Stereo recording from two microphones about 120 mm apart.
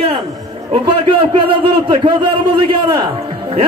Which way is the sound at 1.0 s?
45° right (ahead or behind).